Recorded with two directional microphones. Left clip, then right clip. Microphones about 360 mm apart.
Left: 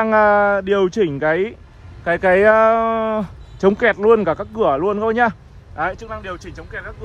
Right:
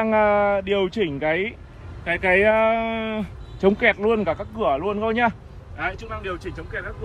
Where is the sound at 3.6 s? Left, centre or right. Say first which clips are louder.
Left 4 dB; centre.